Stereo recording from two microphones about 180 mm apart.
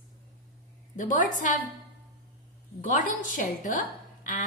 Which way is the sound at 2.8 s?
50° left (ahead or behind).